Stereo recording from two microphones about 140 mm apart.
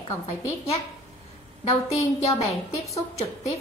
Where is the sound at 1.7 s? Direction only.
50° left (ahead or behind).